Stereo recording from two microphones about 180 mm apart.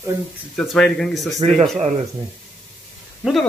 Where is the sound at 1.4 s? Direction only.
35° right (ahead or behind).